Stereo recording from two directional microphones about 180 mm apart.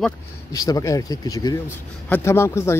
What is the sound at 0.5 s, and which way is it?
Speech, 20° left (ahead or behind).